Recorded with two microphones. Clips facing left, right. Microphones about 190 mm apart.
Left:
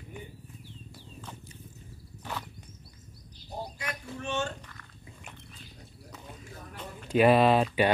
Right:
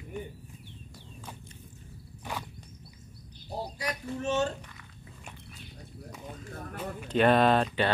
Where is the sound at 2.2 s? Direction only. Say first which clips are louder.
Right 1 dB; 15° right (ahead or behind).